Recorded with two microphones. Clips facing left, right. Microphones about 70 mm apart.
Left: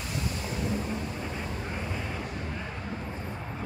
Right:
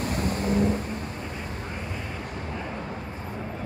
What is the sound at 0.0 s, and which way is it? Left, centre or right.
Vehicle, right.